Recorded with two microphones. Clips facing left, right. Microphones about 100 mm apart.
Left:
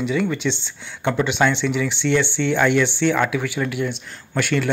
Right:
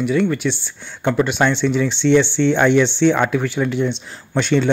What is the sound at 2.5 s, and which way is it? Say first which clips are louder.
Speech: right 2 dB; 20° right (ahead or behind).